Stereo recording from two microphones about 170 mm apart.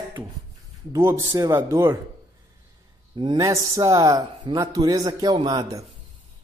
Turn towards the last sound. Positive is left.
turn(degrees=-25)  # may be behind; listen again after turning